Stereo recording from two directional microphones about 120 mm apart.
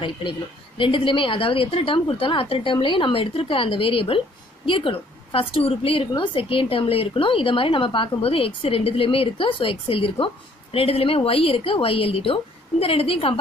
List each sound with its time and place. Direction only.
0.0 s a woman's voice: 45° left (ahead or behind)